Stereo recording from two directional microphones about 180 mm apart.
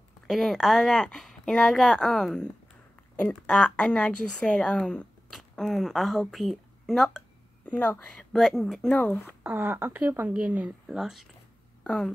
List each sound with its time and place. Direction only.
0.3 s a woman's voice: centre (ahead or behind)
9.4 s speech: 10° right (ahead or behind); by 12.1 s 5° left (ahead or behind)